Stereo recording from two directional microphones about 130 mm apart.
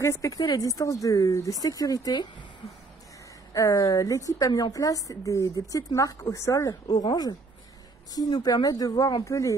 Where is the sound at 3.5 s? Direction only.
25° left (ahead or behind).